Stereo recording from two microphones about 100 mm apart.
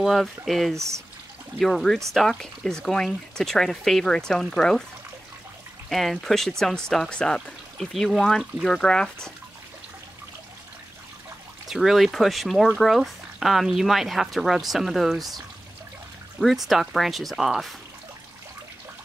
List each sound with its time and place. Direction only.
0.0 s speech: centre (ahead or behind)
0.7 s speech: 30° right (ahead or behind)
1.6 s speech: centre (ahead or behind)
5.9 s speech: centre (ahead or behind)
11.7 s speech: centre (ahead or behind)
16.6 s speech: centre (ahead or behind)